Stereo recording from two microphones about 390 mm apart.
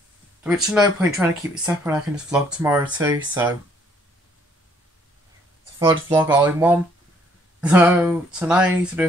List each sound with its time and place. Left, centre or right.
0.4 s speech: centre
5.8 s speech: centre